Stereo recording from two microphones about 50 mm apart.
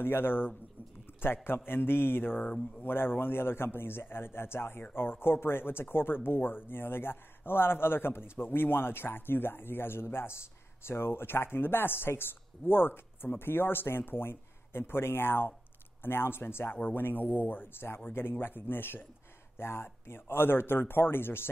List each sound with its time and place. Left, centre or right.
0.0 s speech: left
16.7 s speech: left
17.8 s speech: left